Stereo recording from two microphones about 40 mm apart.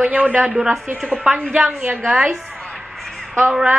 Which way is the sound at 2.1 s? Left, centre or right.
Centre.